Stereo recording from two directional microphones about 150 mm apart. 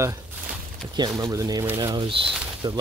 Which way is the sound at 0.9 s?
25° right (ahead or behind).